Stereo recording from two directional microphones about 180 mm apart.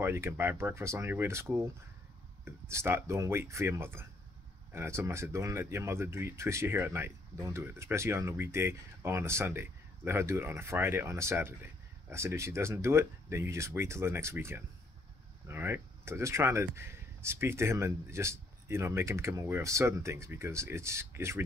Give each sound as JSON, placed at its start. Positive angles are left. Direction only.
{"t": 0.0, "sound": "speech", "side_deg": -15}
{"t": 2.7, "sound": "speech", "side_deg": -15}